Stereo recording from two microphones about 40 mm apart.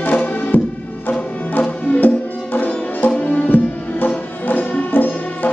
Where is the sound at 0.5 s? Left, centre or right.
Left.